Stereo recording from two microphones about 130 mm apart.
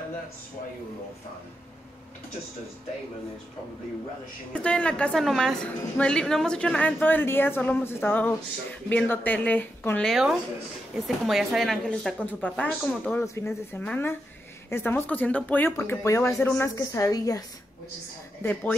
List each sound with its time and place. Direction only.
4.6 s a woman's voice: 10° left (ahead or behind)
10.0 s a woman's voice: centre (ahead or behind)
13.2 s a woman's voice: 20° left (ahead or behind)
15.7 s a woman's voice: 20° left (ahead or behind)
18.4 s a woman's voice: 15° left (ahead or behind)